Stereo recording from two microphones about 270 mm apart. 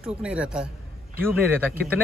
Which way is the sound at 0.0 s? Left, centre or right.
Centre.